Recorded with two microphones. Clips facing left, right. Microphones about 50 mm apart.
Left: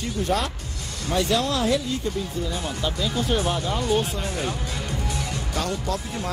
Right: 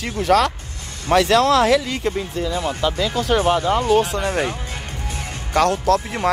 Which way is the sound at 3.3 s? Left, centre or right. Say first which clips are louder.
Right 8 dB; right.